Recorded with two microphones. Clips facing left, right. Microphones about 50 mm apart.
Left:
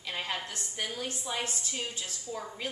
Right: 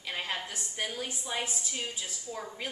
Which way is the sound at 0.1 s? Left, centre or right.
Centre.